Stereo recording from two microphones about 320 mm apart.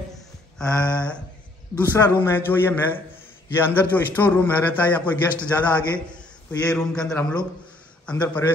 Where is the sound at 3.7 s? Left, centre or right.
Centre.